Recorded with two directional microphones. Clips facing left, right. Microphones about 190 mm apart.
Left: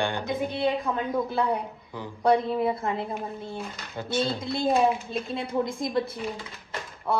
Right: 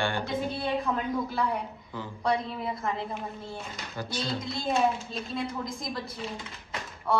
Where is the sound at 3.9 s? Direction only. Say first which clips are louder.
Left 5 dB; 25° left (ahead or behind).